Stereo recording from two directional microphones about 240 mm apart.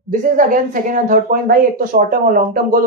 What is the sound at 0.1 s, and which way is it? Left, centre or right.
Speech, right.